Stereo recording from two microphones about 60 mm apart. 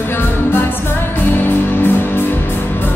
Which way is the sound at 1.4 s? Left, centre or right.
Left.